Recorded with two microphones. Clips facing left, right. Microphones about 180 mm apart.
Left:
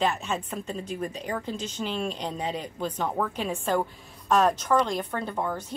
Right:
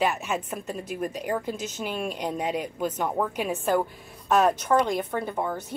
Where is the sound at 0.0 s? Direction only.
10° right (ahead or behind).